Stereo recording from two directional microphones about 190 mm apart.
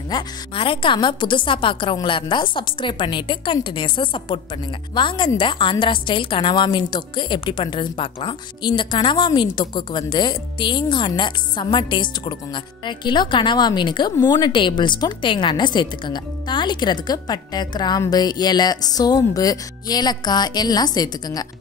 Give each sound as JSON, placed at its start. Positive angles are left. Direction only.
{"t": 0.1, "sound": "a woman's voice", "side_deg": 25}